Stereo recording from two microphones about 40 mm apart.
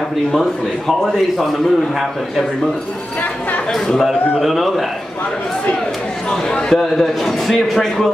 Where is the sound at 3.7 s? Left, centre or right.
Centre.